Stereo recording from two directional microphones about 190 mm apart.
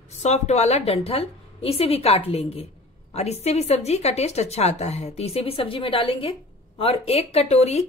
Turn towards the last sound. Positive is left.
turn(degrees=35)  # may be behind; listen again after turning